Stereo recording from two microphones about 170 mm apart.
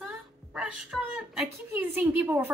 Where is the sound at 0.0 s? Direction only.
5° right (ahead or behind).